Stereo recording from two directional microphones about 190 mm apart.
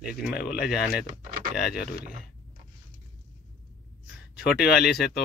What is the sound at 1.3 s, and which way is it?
Power windows, 50° right (ahead or behind).